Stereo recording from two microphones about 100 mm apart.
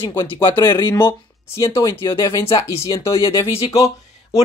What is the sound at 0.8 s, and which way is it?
Speech, 25° left (ahead or behind).